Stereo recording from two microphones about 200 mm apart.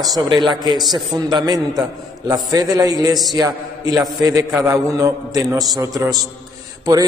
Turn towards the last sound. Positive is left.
turn(degrees=-20)  # may be behind; listen again after turning